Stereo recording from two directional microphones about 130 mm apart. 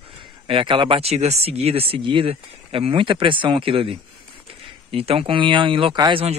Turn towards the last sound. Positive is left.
turn(degrees=-45)  # may be behind; listen again after turning